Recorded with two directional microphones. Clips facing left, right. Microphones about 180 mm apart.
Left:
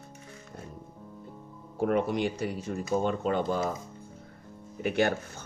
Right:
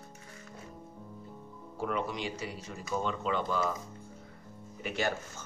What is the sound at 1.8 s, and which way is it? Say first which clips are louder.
Speech: left 7 dB; 55° left (ahead or behind).